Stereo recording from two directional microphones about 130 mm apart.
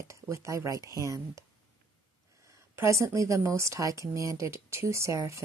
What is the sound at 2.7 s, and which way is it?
Speech, 20° right (ahead or behind).